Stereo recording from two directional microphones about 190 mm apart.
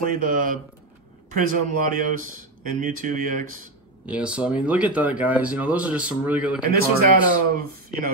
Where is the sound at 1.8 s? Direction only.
45° right (ahead or behind).